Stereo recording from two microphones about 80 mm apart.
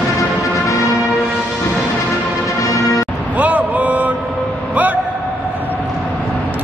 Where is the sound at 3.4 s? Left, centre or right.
Centre.